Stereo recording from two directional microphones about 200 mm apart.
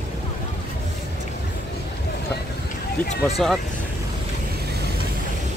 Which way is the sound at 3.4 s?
Centre (ahead or behind).